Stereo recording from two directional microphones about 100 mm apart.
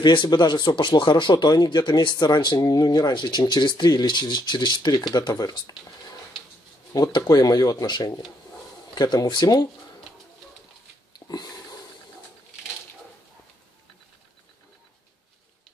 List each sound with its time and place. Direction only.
0.0 s speech: 50° left (ahead or behind)
5.1 s a sound: 40° left (ahead or behind)
6.9 s speech: 40° left (ahead or behind)
11.1 s sniff: 45° left (ahead or behind)